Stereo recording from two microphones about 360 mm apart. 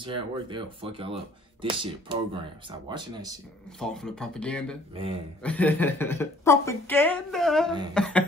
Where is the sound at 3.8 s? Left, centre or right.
Centre.